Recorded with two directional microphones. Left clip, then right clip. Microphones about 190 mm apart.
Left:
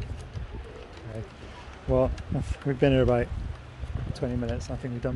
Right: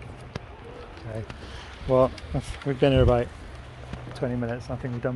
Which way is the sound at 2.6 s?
15° left (ahead or behind).